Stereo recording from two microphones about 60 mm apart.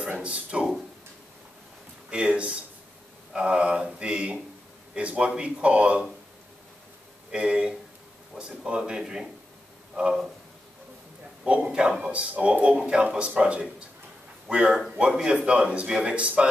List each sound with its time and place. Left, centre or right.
0.2 s speech: centre
2.0 s speech: centre
7.3 s speech: centre
11.4 s speech: centre